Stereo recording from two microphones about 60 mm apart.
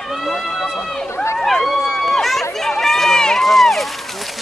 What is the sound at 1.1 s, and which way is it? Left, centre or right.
Run, left.